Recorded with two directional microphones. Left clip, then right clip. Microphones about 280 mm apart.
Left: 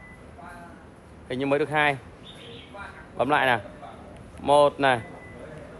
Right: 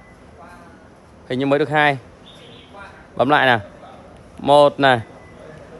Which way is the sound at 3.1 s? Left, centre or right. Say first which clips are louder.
Right 7 dB; right.